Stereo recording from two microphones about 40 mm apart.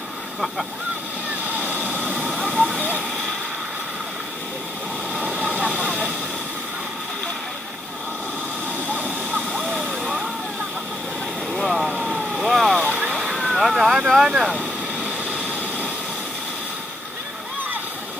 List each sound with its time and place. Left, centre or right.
1.9 s vehicle: right
2.2 s a sound: centre
10.0 s vehicle: centre
11.6 s vehicle: centre
11.9 s vehicle: centre
12.2 s vehicle: centre
12.8 s vehicle: right
13.1 s vehicle: centre